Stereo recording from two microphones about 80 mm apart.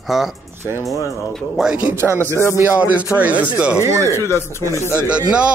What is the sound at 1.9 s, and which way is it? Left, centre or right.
Speech, right.